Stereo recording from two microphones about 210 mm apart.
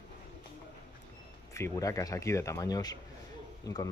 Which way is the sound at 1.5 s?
15° left (ahead or behind).